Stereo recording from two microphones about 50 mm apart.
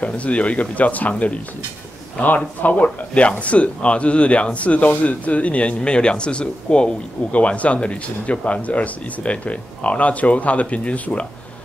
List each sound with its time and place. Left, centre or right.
0.0 s speech: left